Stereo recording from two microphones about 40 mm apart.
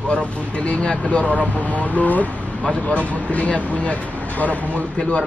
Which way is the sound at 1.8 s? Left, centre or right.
Left.